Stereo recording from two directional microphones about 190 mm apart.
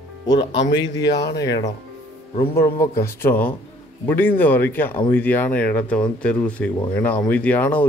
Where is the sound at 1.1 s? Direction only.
65° left (ahead or behind).